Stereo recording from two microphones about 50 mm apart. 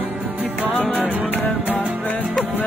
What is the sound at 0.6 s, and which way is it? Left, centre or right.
Music, left.